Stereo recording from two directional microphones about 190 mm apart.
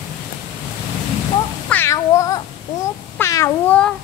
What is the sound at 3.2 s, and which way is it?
Meow, 15° left (ahead or behind).